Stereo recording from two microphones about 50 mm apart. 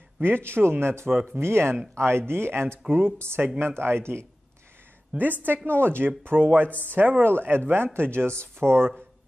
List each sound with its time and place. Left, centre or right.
0.2 s speech: right
5.1 s a woman's voice: right
7.2 s speech: right